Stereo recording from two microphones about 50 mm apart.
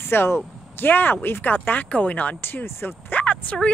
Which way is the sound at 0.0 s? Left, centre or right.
Left.